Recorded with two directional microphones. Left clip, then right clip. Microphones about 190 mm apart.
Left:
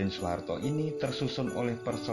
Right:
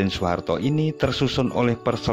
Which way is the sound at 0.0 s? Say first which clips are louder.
Right 9 dB; 50° right (ahead or behind).